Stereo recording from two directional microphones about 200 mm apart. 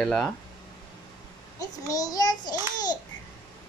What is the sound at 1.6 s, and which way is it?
Speech, 20° left (ahead or behind).